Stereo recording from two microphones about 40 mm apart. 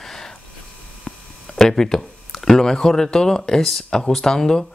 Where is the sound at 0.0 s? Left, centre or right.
Centre.